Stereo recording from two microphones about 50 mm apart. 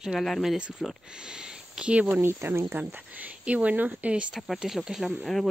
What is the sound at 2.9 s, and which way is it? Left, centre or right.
Speech, right.